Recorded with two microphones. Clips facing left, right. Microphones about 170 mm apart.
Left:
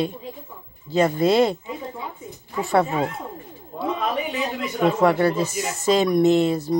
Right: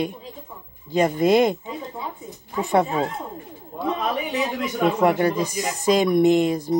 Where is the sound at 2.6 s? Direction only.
20° right (ahead or behind).